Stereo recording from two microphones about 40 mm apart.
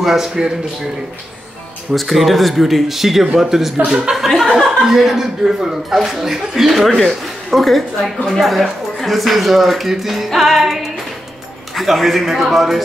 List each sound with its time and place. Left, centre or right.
0.0 s speech: centre
2.0 s speech: centre
3.8 s speech: centre
4.4 s speech: centre